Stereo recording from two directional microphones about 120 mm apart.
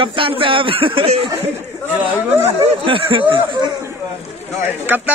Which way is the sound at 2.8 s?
45° right (ahead or behind).